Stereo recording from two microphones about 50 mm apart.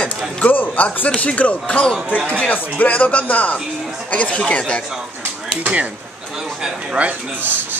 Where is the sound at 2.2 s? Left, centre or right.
Left.